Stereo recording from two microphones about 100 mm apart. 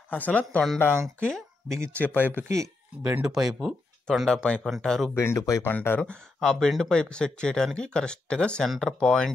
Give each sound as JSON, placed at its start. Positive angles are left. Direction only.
{"t": 0.1, "sound": "speech", "side_deg": 15}
{"t": 1.7, "sound": "speech", "side_deg": -30}
{"t": 3.0, "sound": "speech", "side_deg": -10}
{"t": 4.3, "sound": "speech", "side_deg": 10}
{"t": 5.1, "sound": "speech", "side_deg": 30}
{"t": 5.7, "sound": "speech", "side_deg": 20}
{"t": 5.9, "sound": "speech", "side_deg": 5}